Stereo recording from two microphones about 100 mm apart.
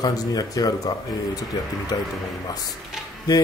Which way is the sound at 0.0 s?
40° left (ahead or behind).